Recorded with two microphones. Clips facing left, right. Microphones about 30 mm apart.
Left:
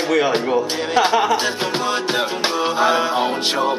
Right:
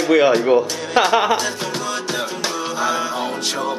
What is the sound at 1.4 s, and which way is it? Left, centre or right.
Music, left.